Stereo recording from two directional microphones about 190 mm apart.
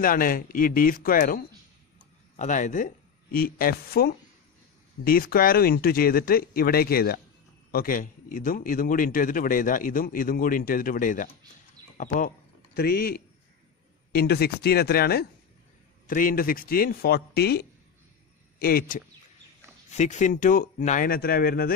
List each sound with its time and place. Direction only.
0.0 s a man's voice: 45° left (ahead or behind)
12.7 s a man's voice: 55° left (ahead or behind)
19.9 s a man's voice: 40° left (ahead or behind)